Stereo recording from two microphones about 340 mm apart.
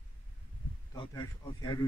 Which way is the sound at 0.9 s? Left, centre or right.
Centre.